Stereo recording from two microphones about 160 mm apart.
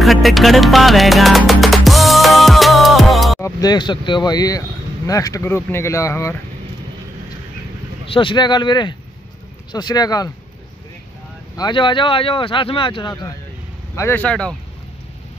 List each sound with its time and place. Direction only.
0.0 s music: centre (ahead or behind)
3.3 s speech: 20° left (ahead or behind)
8.1 s speech: 30° left (ahead or behind)
11.5 s speech: 25° left (ahead or behind)
13.9 s speech: 15° left (ahead or behind)